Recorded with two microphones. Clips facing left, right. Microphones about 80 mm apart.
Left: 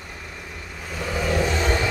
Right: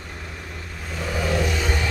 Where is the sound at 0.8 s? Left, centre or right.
Centre.